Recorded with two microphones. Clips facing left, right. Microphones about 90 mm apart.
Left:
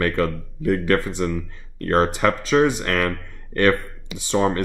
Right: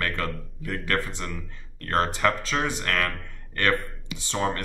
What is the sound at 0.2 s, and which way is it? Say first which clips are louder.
Speech: left 9 dB; 15° left (ahead or behind).